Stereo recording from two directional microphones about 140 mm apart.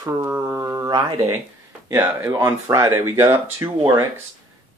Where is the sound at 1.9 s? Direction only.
15° right (ahead or behind).